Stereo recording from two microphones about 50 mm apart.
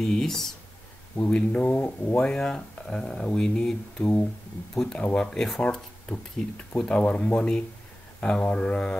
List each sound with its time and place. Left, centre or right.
0.0 s speech: centre
1.3 s speech: left
2.1 s speech: centre
4.0 s speech: left
5.3 s speech: centre